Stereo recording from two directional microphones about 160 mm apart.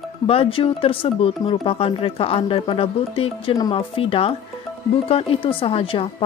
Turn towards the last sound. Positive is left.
turn(degrees=35)  # may be behind; listen again after turning